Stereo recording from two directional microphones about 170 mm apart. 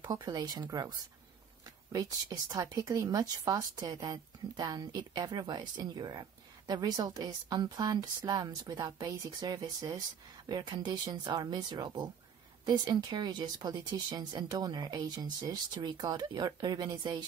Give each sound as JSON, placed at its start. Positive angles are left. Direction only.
{"t": 0.0, "sound": "speech", "side_deg": -25}